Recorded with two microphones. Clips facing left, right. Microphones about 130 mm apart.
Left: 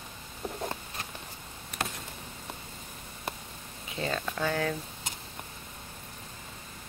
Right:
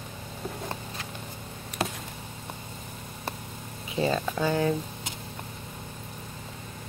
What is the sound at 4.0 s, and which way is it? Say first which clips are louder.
Speech: right 6 dB; 15° right (ahead or behind).